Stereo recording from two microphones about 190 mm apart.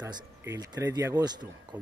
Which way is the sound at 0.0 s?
15° right (ahead or behind).